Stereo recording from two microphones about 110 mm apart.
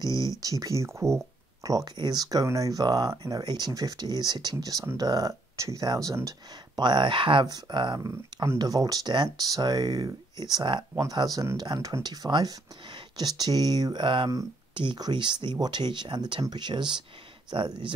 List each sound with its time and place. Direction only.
0.0 s speech: 35° right (ahead or behind)
6.8 s speech: 45° right (ahead or behind)
11.0 s speech: 35° right (ahead or behind)